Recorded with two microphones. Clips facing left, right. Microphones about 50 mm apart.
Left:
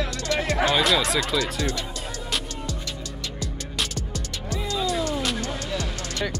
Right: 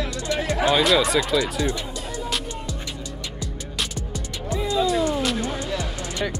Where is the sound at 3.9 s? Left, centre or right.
Centre.